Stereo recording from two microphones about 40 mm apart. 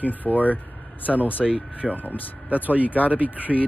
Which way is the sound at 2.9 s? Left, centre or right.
Left.